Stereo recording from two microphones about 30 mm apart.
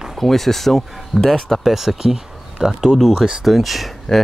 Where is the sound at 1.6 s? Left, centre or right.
Centre.